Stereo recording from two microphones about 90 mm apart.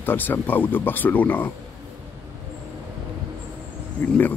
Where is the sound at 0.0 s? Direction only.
20° left (ahead or behind).